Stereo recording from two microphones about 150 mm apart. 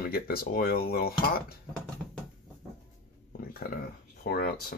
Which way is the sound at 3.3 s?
90° left.